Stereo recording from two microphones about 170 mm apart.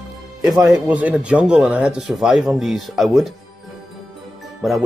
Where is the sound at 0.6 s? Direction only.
10° right (ahead or behind).